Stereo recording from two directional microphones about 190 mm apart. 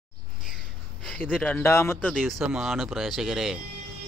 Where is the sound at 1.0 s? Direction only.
5° left (ahead or behind).